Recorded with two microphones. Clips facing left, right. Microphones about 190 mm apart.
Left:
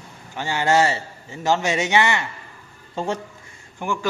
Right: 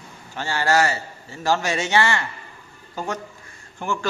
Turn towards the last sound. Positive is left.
turn(degrees=15)  # may be behind; listen again after turning